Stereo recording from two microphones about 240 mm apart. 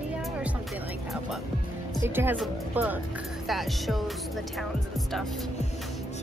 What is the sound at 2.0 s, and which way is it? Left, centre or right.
Speech, centre.